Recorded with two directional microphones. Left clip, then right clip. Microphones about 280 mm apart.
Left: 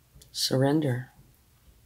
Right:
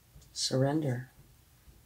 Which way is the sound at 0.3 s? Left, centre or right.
Left.